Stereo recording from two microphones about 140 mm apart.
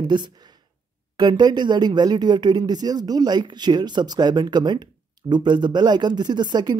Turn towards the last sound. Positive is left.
turn(degrees=-30)  # may be behind; listen again after turning